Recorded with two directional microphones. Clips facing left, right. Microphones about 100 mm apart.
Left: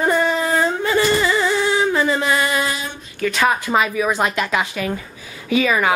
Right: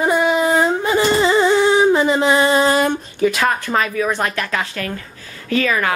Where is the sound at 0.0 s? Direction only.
10° right (ahead or behind); by 2.7 s 30° right (ahead or behind).